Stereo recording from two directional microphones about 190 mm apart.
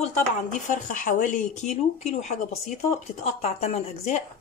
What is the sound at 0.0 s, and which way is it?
Speech, 40° left (ahead or behind).